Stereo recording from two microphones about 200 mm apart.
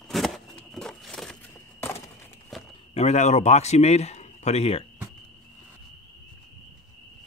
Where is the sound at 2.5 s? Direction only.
Centre (ahead or behind).